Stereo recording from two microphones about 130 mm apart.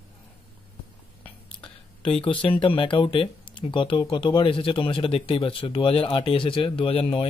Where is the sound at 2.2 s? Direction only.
45° left (ahead or behind).